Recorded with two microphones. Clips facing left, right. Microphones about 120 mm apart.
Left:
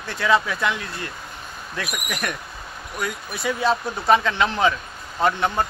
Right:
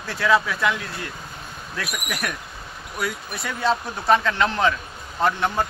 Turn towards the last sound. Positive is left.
turn(degrees=0)  # may be behind; listen again after turning